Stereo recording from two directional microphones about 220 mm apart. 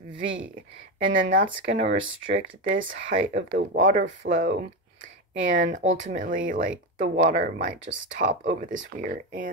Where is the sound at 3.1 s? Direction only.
50° right (ahead or behind).